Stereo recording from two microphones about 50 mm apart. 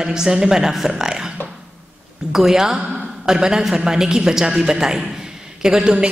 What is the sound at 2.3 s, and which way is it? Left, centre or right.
A man's voice, centre.